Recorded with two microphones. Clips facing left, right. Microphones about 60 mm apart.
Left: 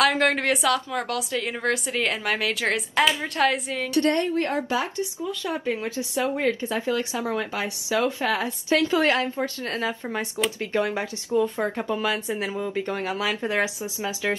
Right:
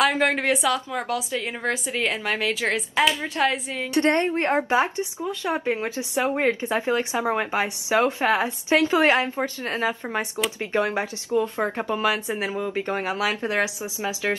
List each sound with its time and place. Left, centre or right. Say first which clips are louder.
0.2 s a woman's voice: even; centre
3.9 s speech: right 1 dB; right